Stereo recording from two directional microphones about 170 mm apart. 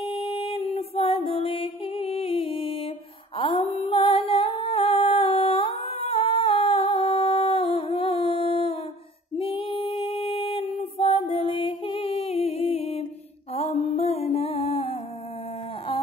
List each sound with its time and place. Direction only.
0.0 s music: 35° left (ahead or behind)
3.3 s a sound: 30° left (ahead or behind)
9.4 s female singing: 30° left (ahead or behind)
13.6 s music: 35° left (ahead or behind)